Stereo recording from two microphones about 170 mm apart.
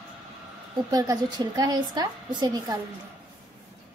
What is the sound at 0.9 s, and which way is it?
A woman's voice, 20° right (ahead or behind).